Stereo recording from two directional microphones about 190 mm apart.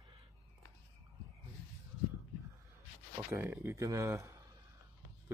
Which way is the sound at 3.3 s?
15° right (ahead or behind).